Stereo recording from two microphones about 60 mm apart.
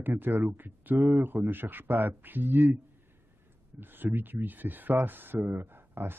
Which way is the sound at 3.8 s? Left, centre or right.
Right.